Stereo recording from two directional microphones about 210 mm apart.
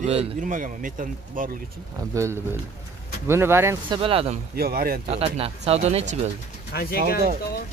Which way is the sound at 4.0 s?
25° right (ahead or behind).